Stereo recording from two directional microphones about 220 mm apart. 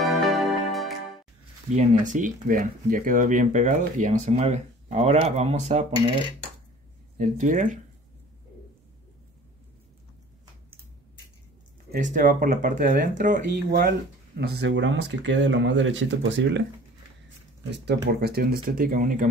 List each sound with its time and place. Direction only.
0.2 s music: centre (ahead or behind)
1.7 s speech: 35° right (ahead or behind)
7.2 s speech: 35° right (ahead or behind)
11.9 s speech: 35° right (ahead or behind)
14.5 s speech: 55° right (ahead or behind)
17.6 s speech: 50° right (ahead or behind)